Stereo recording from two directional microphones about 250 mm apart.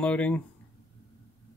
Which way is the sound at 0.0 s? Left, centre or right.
Centre.